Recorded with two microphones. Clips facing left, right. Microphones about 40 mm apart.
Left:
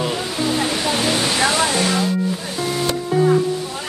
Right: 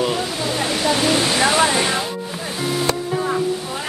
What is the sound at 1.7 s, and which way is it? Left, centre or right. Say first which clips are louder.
Music: even; centre.